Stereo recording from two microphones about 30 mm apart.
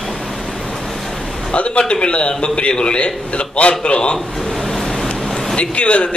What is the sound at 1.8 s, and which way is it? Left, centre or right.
A man's voice, left.